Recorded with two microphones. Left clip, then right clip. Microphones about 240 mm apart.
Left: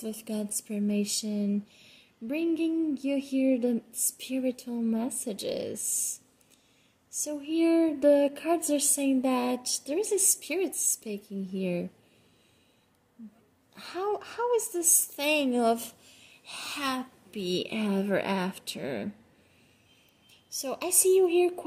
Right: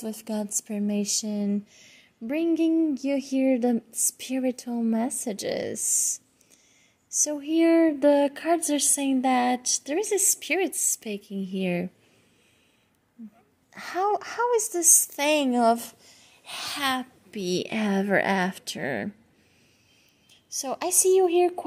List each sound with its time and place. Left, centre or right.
0.0 s a woman's voice: right
13.7 s a woman's voice: right
20.2 s speech: right